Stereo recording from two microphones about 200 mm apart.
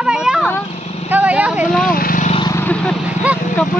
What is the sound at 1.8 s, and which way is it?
Vehicle, 45° left (ahead or behind).